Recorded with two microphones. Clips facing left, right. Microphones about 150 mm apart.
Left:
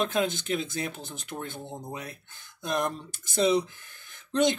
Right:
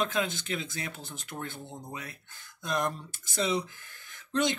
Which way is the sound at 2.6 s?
20° left (ahead or behind).